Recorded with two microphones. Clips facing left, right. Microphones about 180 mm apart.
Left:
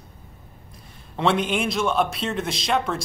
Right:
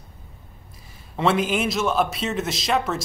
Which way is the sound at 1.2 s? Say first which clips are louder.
Right 1 dB; centre (ahead or behind).